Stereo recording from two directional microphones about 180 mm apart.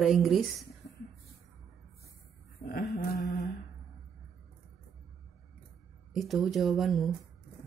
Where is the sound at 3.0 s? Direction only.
60° left (ahead or behind).